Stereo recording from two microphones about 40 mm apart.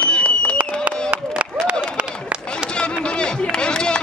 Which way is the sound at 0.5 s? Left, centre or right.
Right.